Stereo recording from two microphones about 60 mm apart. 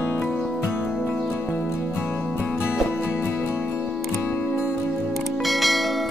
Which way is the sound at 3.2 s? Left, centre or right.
Left.